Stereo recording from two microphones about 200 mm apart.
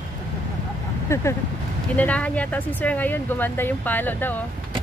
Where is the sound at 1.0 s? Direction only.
15° left (ahead or behind).